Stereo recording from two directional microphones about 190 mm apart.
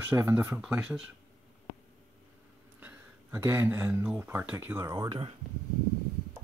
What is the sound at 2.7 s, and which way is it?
Speech, 10° right (ahead or behind).